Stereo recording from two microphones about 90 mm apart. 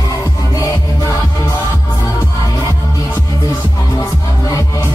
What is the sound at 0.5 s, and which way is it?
Music, 40° left (ahead or behind).